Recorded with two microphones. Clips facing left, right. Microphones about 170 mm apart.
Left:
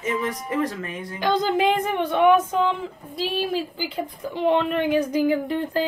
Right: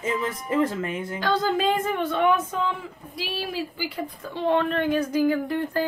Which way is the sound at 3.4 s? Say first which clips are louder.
Left 4 dB; 20° left (ahead or behind).